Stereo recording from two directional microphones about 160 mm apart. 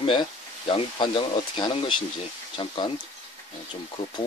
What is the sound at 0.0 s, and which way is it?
Speech, 30° left (ahead or behind).